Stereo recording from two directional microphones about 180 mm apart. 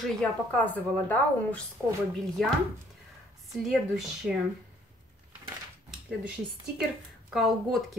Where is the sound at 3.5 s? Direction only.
Centre (ahead or behind).